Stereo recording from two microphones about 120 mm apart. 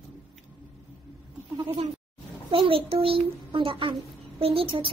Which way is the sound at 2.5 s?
50° right (ahead or behind).